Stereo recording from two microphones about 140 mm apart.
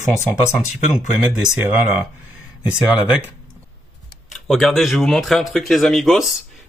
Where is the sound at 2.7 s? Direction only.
10° right (ahead or behind).